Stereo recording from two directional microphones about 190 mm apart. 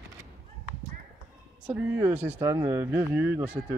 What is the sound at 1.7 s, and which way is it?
Speech, 10° right (ahead or behind).